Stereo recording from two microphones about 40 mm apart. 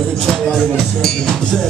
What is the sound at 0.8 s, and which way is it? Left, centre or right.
Music, centre.